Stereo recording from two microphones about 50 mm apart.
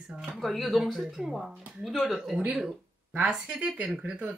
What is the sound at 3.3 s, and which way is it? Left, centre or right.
Speech, centre.